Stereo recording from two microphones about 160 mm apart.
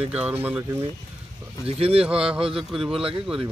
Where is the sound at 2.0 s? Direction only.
5° right (ahead or behind).